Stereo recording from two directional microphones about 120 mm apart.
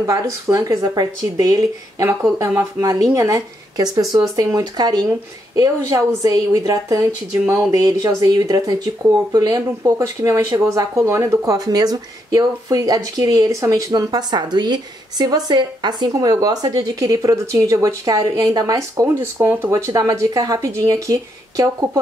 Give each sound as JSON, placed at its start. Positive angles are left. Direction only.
{"t": 0.0, "sound": "speech", "side_deg": -25}
{"t": 19.0, "sound": "speech", "side_deg": -20}